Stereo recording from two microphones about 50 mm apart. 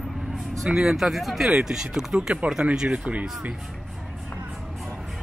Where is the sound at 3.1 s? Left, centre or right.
Right.